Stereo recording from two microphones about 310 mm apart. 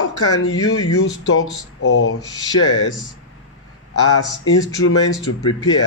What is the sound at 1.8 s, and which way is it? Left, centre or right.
Speech, left.